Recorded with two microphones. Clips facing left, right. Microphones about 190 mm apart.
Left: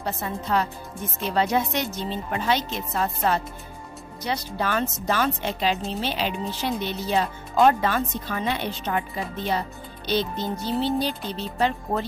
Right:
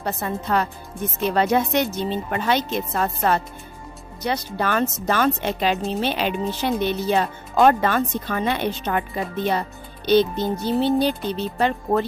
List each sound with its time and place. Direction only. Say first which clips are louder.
0.0 s speech: right 3 dB; 55° right (ahead or behind)